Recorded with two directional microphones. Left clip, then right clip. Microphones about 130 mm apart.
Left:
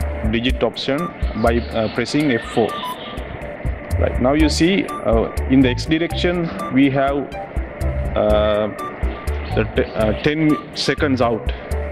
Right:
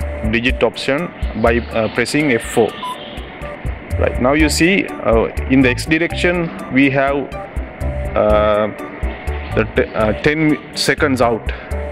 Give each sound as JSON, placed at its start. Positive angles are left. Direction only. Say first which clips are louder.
{"t": 0.3, "sound": "speech", "louder": "right 4 dB", "side_deg": -20}
{"t": 4.0, "sound": "speech", "louder": "right 3 dB", "side_deg": -25}